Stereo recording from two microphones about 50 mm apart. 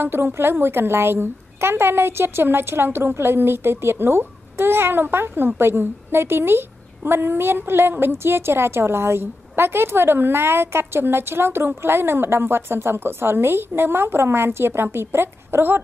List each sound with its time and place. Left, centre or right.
0.0 s a woman's voice: right